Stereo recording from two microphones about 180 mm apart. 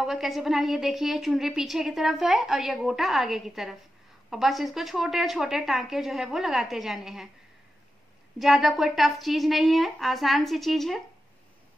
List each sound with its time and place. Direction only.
0.0 s a woman's voice: centre (ahead or behind)
8.4 s a woman's voice: centre (ahead or behind)